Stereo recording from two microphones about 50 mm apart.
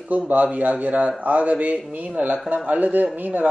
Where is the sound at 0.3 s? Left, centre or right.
Right.